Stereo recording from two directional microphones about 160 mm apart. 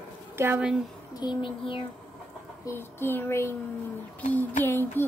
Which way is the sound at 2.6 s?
15° left (ahead or behind).